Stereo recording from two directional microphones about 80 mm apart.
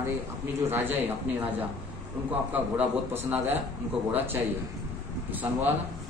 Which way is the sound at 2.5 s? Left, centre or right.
Right.